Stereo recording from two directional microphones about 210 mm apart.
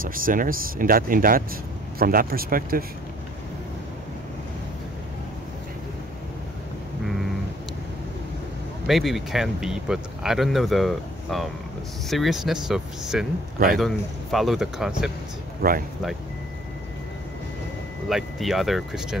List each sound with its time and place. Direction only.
0.0 s speech: 40° right (ahead or behind)
8.8 s speech: centre (ahead or behind)
15.6 s speech: 45° right (ahead or behind)
18.0 s speech: centre (ahead or behind)